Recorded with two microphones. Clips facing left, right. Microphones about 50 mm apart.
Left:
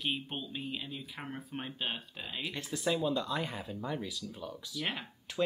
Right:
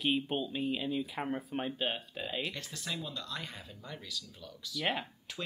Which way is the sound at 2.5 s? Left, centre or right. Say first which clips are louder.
Left 7 dB; centre.